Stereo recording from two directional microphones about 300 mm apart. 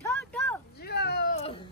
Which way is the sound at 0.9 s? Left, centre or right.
Left.